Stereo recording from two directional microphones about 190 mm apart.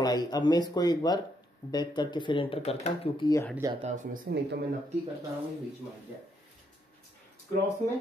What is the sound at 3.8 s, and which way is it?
Speech, 40° right (ahead or behind).